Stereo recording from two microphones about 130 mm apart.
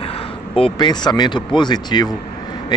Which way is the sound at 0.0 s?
45° left (ahead or behind).